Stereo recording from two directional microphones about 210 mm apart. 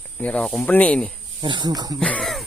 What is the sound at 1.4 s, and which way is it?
Speech, 20° right (ahead or behind).